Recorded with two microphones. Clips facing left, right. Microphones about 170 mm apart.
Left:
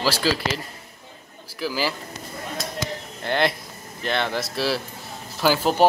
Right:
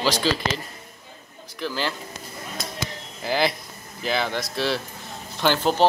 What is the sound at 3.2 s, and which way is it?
Speech, centre (ahead or behind).